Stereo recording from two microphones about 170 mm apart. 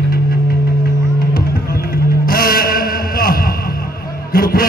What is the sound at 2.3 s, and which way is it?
Music, 60° left (ahead or behind).